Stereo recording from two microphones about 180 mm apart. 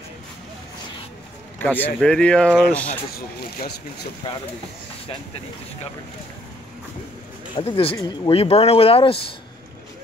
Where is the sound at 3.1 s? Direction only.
60° left (ahead or behind).